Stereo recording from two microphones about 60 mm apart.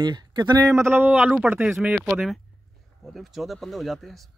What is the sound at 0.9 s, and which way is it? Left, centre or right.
Speech, right.